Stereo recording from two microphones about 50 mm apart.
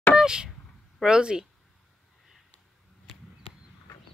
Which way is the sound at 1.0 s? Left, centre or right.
Centre.